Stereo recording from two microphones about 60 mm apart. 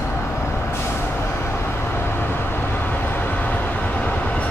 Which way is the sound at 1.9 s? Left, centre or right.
Left.